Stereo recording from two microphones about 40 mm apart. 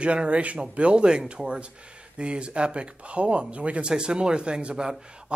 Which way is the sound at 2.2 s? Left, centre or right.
Right.